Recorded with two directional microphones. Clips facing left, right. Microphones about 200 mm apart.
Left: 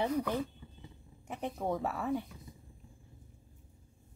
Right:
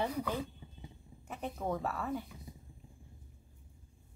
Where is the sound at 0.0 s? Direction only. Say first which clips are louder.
Left 3 dB; 15° left (ahead or behind).